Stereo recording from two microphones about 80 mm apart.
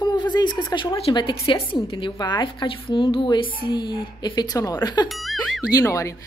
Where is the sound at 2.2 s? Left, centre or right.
Left.